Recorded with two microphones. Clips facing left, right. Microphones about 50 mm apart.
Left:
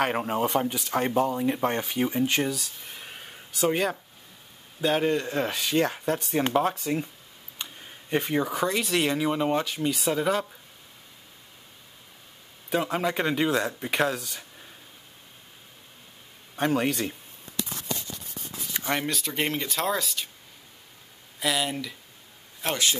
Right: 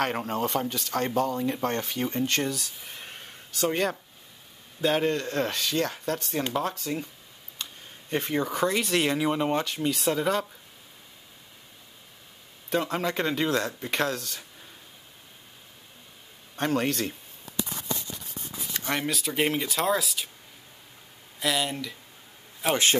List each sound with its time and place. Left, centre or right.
0.0 s speech: centre
7.5 s a sound: centre
8.2 s speech: centre
12.6 s speech: centre
16.5 s speech: centre
18.7 s a sound: centre
18.9 s speech: centre
21.4 s speech: centre
22.7 s a man's voice: right